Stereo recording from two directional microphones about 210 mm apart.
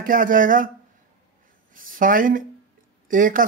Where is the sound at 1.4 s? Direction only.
40° right (ahead or behind).